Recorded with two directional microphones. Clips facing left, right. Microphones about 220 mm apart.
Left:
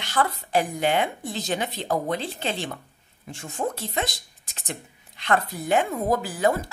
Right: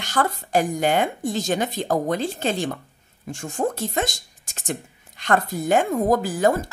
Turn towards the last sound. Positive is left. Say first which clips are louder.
# right 3 dB
turn(degrees=-45)  # may be behind; listen again after turning